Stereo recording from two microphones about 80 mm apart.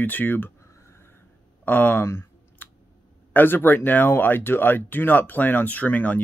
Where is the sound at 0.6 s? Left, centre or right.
Left.